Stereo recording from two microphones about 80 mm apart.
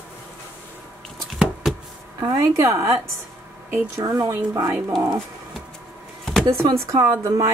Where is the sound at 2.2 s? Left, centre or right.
Right.